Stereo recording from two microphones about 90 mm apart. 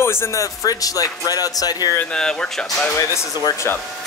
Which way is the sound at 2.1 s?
10° left (ahead or behind).